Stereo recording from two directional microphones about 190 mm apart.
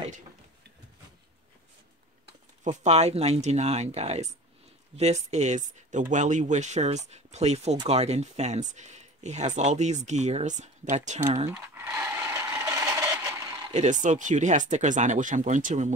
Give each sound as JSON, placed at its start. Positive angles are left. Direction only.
{"t": 2.6, "sound": "speech", "side_deg": -40}
{"t": 11.4, "sound": "a sound", "side_deg": -15}
{"t": 13.7, "sound": "speech", "side_deg": -40}